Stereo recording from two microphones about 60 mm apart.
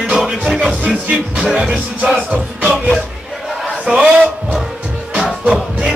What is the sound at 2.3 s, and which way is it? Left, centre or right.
Music, right.